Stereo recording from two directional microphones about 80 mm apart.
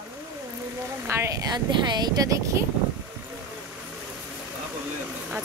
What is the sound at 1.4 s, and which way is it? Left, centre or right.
Speech, right.